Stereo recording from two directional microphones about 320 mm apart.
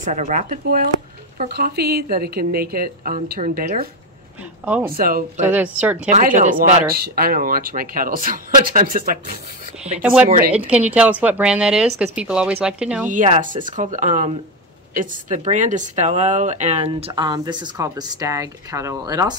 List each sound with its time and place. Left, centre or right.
0.0 s a woman's voice: right
4.6 s speech: centre
4.9 s a woman's voice: right
5.5 s speech: centre
6.1 s a woman's voice: right
9.9 s speech: centre
13.1 s a woman's voice: right